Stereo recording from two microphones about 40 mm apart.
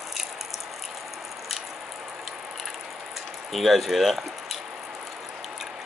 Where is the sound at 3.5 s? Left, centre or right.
Centre.